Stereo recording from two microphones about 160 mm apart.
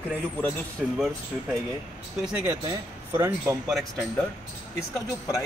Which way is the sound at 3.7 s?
Centre (ahead or behind).